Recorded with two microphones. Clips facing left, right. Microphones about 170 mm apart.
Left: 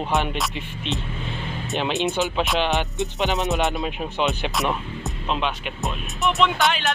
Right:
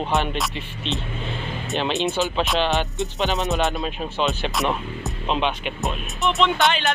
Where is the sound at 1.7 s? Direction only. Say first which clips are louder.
Even; 20° left (ahead or behind).